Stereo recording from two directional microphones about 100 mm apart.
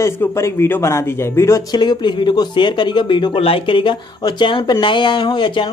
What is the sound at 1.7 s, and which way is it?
Speech, 45° left (ahead or behind).